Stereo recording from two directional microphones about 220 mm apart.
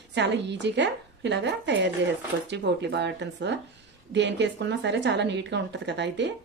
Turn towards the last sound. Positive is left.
turn(degrees=-55)  # may be behind; listen again after turning